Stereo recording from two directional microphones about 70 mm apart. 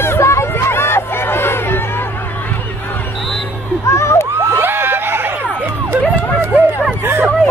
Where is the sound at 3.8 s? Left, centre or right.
Left.